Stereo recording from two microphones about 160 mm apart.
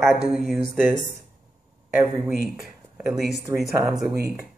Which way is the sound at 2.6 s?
Centre (ahead or behind).